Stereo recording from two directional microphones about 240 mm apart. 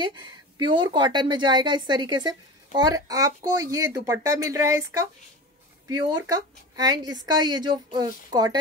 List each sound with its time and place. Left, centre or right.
0.0 s a woman's voice: centre
6.3 s a woman's voice: centre